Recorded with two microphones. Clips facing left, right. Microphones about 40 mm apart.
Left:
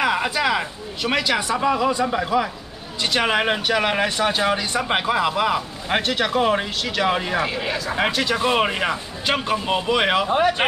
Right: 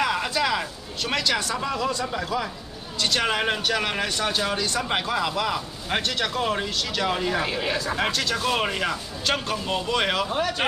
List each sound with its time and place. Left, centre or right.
0.0 s speech: centre
7.4 s speech: centre
7.9 s speech: centre